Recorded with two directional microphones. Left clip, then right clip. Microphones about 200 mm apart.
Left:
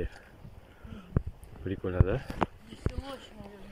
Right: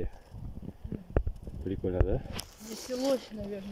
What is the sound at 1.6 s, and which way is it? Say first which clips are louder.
Speech: right 1 dB; 30° right (ahead or behind).